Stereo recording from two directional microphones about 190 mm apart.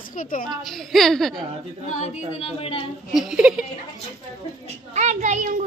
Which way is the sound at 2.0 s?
30° left (ahead or behind).